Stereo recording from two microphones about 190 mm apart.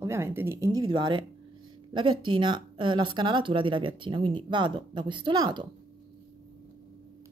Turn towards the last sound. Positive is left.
turn(degrees=-25)  # may be behind; listen again after turning